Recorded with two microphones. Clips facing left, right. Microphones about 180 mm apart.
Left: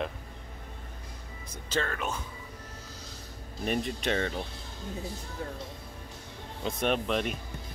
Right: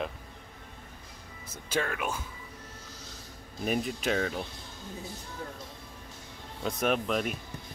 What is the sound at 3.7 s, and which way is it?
Speech, 5° right (ahead or behind).